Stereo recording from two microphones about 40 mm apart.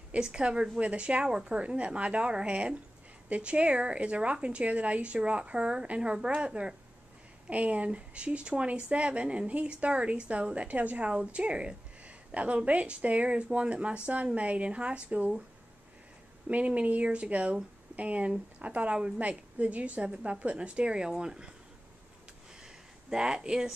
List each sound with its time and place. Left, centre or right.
0.2 s a woman's voice: right
16.4 s a woman's voice: right; by 21.5 s centre
22.6 s a sound: centre